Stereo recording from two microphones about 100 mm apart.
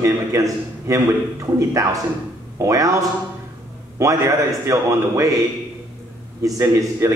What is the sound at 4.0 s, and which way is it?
A man's voice, 30° right (ahead or behind).